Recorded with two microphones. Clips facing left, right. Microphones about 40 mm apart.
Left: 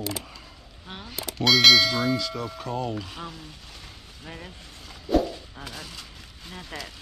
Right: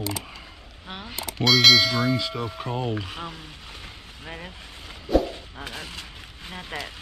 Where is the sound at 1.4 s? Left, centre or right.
Centre.